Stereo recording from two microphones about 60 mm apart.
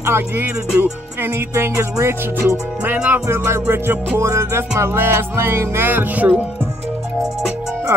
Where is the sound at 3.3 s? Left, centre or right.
Right.